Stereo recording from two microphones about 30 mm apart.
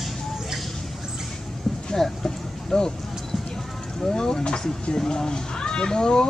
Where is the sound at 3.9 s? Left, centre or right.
Centre.